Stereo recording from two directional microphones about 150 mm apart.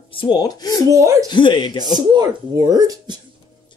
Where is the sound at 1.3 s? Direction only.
30° left (ahead or behind).